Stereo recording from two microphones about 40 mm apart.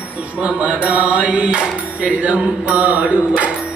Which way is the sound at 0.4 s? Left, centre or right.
Right.